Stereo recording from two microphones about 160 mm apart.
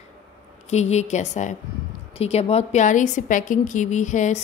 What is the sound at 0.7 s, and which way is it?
A woman's voice, 45° left (ahead or behind).